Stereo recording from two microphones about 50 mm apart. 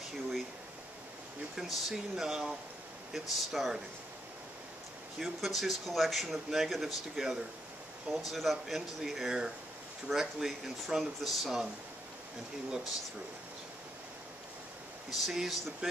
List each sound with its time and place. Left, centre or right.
1.6 s speech: centre
5.2 s speech: centre
15.0 s speech: centre